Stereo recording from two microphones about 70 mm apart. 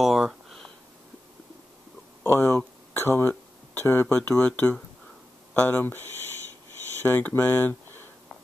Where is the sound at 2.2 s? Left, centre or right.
Left.